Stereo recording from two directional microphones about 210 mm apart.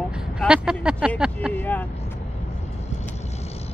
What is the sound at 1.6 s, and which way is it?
Speech, 10° left (ahead or behind).